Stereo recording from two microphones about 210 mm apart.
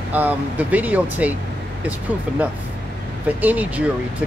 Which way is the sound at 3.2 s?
5° right (ahead or behind).